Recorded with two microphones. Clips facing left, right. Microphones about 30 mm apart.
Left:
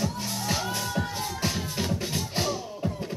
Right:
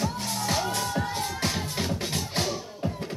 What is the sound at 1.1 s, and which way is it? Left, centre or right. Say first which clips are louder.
Music: right 1 dB; right.